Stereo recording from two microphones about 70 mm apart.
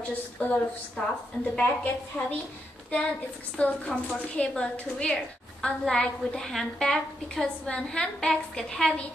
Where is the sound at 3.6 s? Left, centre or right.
Centre.